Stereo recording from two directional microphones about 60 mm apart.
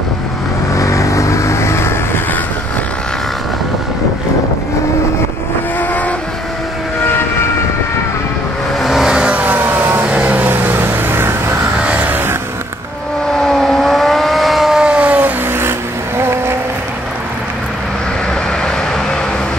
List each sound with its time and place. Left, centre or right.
0.7 s vehicle: left
8.8 s vehicle: centre
9.1 s vehicle: centre
9.4 s vehicle: right
11.8 s vehicle: right
13.4 s vehicle: centre
14.8 s vehicle: centre
16.2 s vehicle: right